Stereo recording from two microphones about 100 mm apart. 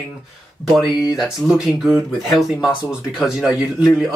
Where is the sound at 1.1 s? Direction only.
5° right (ahead or behind).